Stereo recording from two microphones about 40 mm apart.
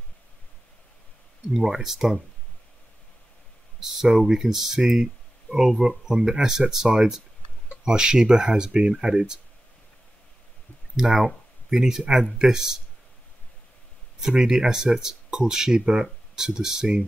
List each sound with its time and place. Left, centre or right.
1.5 s speech: centre
4.2 s speech: centre
11.0 s speech: centre
14.2 s speech: centre